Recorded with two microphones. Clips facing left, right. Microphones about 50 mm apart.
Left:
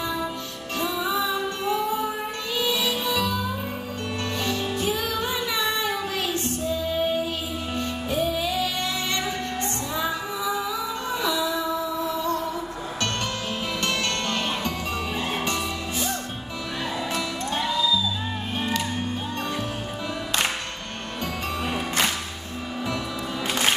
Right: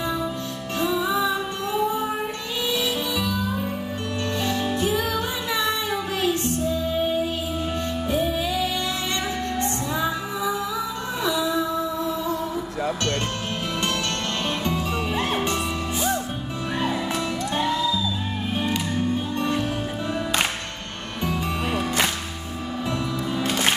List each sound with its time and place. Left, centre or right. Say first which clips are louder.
1.0 s music: right 2 dB; right
5.6 s child singing: right 2 dB; right
8.1 s music: right 1 dB; right
11.2 s music: right 2 dB; right
17.6 s music: even; right